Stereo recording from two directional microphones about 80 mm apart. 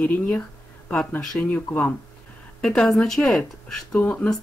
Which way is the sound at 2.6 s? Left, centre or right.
Centre.